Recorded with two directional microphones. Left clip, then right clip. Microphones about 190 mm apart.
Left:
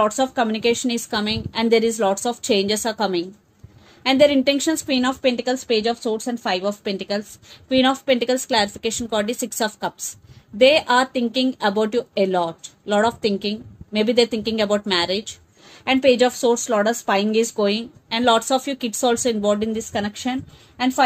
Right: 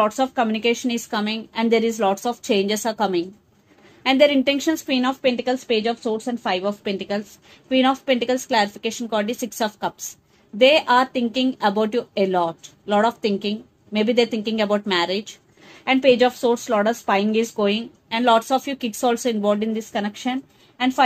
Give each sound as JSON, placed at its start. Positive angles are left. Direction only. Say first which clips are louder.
{"t": 0.0, "sound": "a woman's voice", "louder": "left 1 dB", "side_deg": 40}